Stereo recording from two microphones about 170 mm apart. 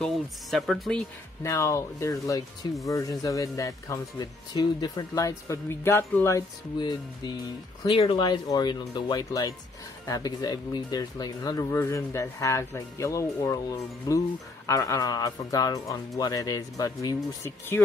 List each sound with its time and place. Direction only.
0.0 s speech: centre (ahead or behind)
1.4 s speech: 15° left (ahead or behind)